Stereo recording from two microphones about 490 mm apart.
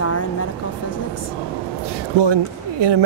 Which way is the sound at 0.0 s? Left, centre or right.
Left.